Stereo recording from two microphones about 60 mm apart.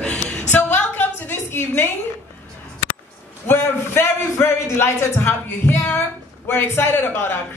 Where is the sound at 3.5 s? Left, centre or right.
Left.